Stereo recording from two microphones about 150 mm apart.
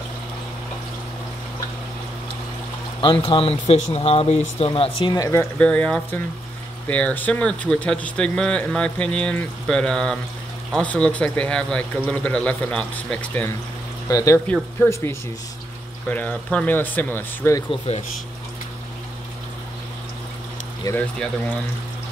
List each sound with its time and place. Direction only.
3.0 s speech: 35° left (ahead or behind)
5.1 s speech: 20° left (ahead or behind)
14.0 s speech: 20° left (ahead or behind)
14.5 s speech: 10° left (ahead or behind)
16.1 s speech: 10° left (ahead or behind)
17.6 s speech: 45° left (ahead or behind)